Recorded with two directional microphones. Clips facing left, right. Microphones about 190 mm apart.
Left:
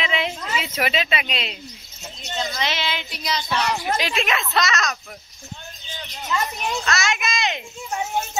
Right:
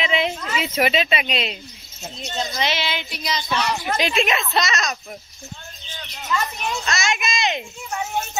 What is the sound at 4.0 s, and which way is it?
Speech, 25° right (ahead or behind).